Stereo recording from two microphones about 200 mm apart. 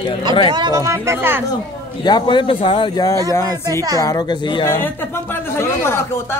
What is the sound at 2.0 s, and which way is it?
A man's voice, 20° left (ahead or behind).